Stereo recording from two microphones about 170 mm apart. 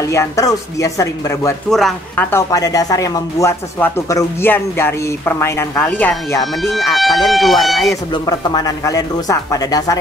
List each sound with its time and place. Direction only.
0.1 s speech: 15° left (ahead or behind)
1.7 s speech: centre (ahead or behind)
2.3 s speech: 20° left (ahead or behind); by 7.9 s centre (ahead or behind)
8.1 s speech: 25° left (ahead or behind)